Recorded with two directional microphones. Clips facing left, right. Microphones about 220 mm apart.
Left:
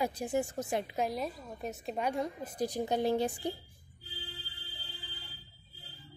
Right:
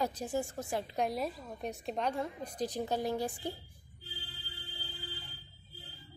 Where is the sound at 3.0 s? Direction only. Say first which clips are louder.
Left 7 dB; 30° left (ahead or behind).